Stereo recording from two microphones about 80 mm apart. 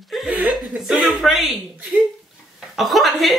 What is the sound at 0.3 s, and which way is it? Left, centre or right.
Chuckle, centre.